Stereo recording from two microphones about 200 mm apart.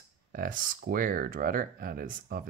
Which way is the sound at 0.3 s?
45° right (ahead or behind).